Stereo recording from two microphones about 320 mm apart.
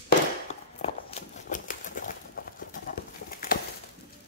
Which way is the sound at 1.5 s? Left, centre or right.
Left.